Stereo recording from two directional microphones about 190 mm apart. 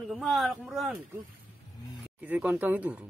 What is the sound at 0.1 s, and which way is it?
Speech, centre (ahead or behind).